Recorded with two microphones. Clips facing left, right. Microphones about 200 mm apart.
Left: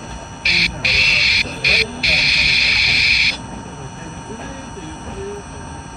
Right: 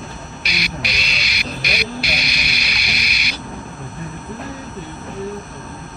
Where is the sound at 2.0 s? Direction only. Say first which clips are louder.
Right 1 dB; 60° right (ahead or behind).